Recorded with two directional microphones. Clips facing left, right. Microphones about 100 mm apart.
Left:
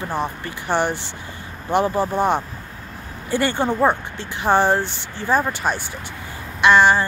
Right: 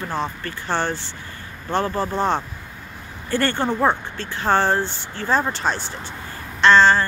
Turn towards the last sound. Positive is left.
turn(degrees=15)  # may be behind; listen again after turning